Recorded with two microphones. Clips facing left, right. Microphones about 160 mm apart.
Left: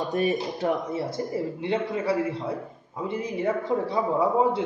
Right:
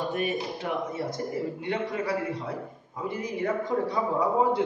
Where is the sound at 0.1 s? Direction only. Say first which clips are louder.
Left 4 dB; 40° left (ahead or behind).